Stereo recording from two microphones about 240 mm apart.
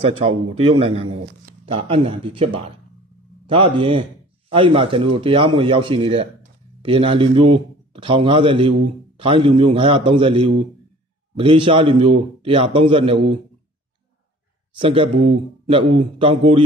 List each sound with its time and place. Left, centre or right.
0.6 s a man's voice: right
14.8 s a man's voice: right